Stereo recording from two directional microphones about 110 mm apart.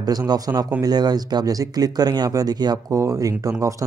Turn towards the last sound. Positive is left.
turn(degrees=-30)  # may be behind; listen again after turning